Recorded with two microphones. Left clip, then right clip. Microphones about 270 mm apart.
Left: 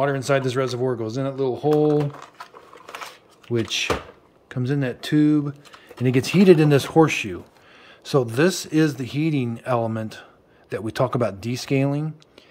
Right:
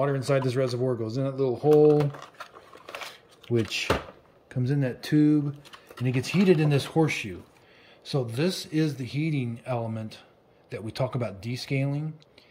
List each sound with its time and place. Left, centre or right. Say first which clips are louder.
0.0 s speech: left 5 dB; centre
3.4 s speech: left 3 dB; centre
6.0 s speech: left 8 dB; centre